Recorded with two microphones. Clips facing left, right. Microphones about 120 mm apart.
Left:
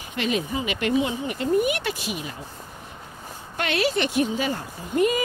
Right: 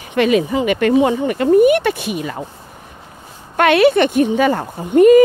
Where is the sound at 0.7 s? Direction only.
50° right (ahead or behind).